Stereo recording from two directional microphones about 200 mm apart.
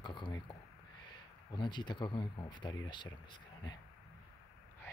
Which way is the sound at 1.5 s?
20° left (ahead or behind).